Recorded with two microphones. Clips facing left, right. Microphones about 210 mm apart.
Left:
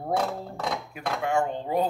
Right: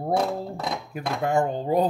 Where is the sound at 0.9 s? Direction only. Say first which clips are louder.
Right 4 dB; 40° right (ahead or behind).